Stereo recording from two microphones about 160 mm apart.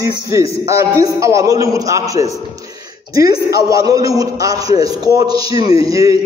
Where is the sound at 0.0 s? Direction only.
20° right (ahead or behind).